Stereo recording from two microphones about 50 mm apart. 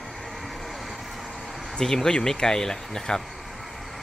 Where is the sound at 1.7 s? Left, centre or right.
Centre.